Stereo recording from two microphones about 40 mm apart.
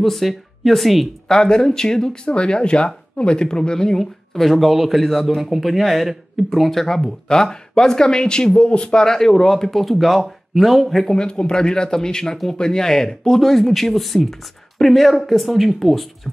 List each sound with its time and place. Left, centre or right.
0.0 s speech: centre
1.3 s speech: centre
4.0 s a man's voice: centre
6.9 s a man's voice: centre
11.1 s a man's voice: left; by 16.1 s centre